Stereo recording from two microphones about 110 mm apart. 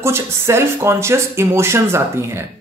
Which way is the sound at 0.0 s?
25° right (ahead or behind).